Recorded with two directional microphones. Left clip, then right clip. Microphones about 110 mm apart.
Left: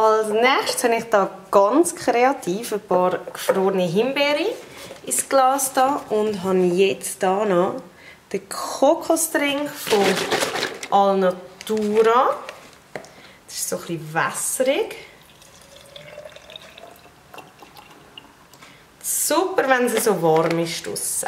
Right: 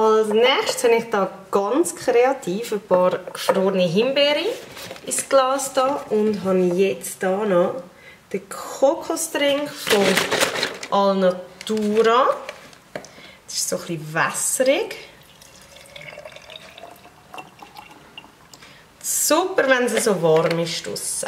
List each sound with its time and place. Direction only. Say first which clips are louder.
0.0 s a woman's voice: right 1 dB; 30° left (ahead or behind)
6.3 s speech: even; 35° left (ahead or behind)
9.0 s speech: left 1 dB; 20° left (ahead or behind)
10.5 s a woman's voice: left 2 dB; 5° left (ahead or behind)
19.1 s a woman's voice: right 1 dB; 5° left (ahead or behind)